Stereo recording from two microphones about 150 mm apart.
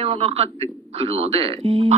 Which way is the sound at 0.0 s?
40° right (ahead or behind).